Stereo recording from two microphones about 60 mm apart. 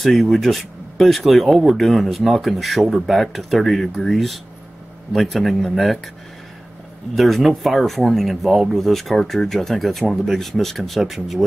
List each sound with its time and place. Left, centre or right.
0.0 s speech: centre
7.2 s speech: centre